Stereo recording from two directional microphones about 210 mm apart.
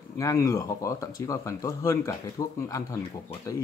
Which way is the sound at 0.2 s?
15° left (ahead or behind).